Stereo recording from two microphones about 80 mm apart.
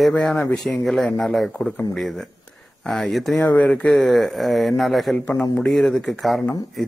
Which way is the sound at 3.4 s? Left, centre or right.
Centre.